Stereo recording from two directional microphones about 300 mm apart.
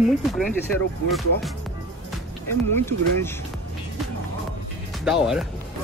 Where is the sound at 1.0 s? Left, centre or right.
Centre.